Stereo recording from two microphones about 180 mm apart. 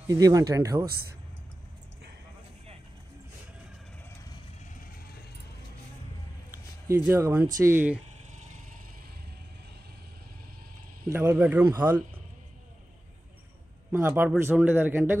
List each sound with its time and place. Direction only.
0.1 s speech: 20° right (ahead or behind)
6.9 s a man's voice: 10° right (ahead or behind)
11.1 s a man's voice: 10° right (ahead or behind)
13.9 s a man's voice: 10° right (ahead or behind)